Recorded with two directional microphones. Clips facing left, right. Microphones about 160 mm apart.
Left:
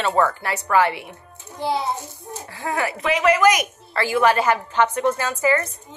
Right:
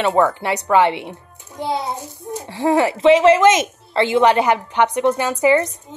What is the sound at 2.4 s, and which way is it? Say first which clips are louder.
A woman's voice: right 9 dB; 25° right (ahead or behind).